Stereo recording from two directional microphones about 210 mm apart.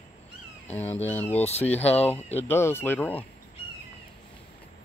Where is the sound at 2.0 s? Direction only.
30° left (ahead or behind).